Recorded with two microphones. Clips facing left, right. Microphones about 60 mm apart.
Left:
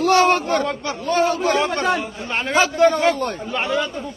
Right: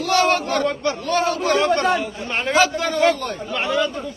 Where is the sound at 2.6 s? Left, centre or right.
Left.